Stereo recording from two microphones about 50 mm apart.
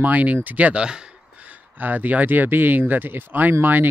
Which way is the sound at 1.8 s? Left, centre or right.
Right.